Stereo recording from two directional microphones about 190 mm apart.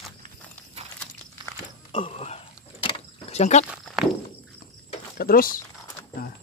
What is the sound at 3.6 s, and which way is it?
Walk, 5° right (ahead or behind).